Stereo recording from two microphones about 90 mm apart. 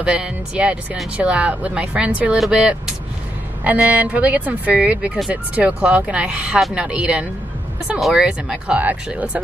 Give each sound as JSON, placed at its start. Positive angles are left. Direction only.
{"t": 0.0, "sound": "speech", "side_deg": -10}
{"t": 3.9, "sound": "speech", "side_deg": -15}